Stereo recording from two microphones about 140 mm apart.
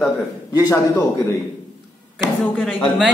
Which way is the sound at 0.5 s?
20° left (ahead or behind).